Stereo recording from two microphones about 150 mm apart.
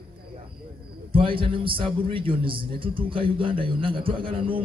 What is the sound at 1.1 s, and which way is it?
A man's voice, 35° right (ahead or behind).